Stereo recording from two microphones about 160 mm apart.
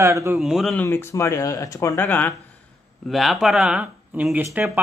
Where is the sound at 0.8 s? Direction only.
15° left (ahead or behind).